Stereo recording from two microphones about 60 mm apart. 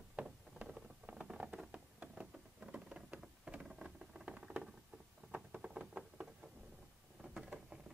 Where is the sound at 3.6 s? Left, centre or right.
Centre.